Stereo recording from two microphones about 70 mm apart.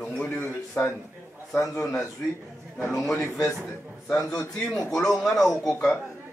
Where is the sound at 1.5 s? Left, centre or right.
Left.